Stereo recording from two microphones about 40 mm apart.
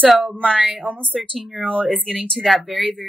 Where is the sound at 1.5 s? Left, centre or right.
Centre.